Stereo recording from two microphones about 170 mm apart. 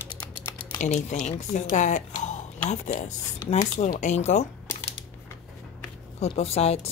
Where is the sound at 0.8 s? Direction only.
45° left (ahead or behind).